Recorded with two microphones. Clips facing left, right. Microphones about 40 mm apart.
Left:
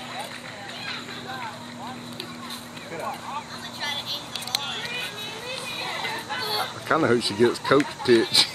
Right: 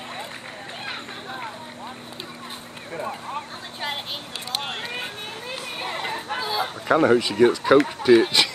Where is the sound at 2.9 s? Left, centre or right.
Centre.